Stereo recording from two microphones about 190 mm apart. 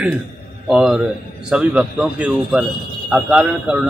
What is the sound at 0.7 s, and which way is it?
A man's voice, 5° right (ahead or behind).